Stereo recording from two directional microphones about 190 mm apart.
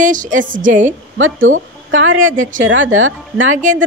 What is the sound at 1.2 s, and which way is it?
Speech, 90° right.